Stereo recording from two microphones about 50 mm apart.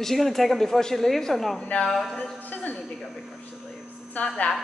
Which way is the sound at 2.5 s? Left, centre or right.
Left.